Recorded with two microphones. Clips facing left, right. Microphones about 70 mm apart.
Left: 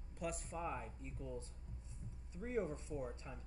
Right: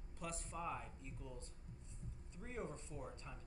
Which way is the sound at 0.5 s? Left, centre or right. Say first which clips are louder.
Left 2 dB; centre.